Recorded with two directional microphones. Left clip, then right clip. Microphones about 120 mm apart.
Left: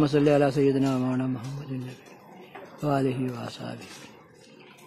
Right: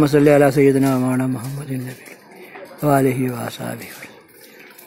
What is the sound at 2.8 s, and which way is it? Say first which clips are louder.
Speech: right 10 dB; 20° right (ahead or behind).